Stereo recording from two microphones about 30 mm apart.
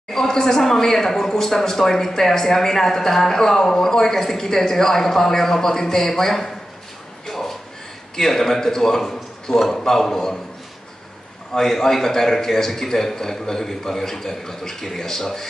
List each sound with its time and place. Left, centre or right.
0.1 s speech: centre
7.2 s a sound: centre
8.2 s speech: centre
11.5 s speech: centre